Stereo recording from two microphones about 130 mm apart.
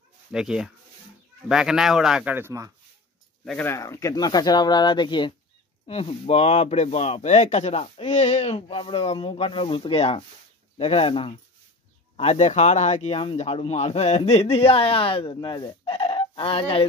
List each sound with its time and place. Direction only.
0.3 s speech: 5° right (ahead or behind)
2.3 s speech: 20° right (ahead or behind)
3.6 s speech: 25° left (ahead or behind)
5.9 s speech: 50° left (ahead or behind)
12.2 s speech: 60° left (ahead or behind); by 16.8 s 45° left (ahead or behind)